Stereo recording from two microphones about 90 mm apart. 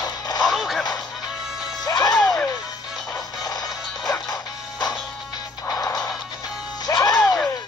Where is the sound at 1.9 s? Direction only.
45° left (ahead or behind).